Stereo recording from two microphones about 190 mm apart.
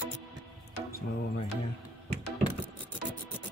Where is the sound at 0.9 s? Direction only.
55° left (ahead or behind).